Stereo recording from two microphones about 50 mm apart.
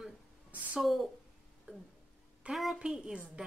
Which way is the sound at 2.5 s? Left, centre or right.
Centre.